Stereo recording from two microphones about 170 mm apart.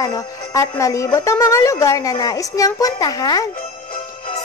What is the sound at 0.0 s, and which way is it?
Speech, 20° left (ahead or behind).